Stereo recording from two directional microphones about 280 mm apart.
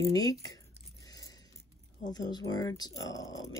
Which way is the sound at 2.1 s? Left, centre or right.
Centre.